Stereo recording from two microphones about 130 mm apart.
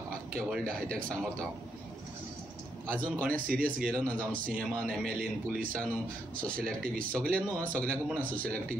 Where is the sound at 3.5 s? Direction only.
90° right.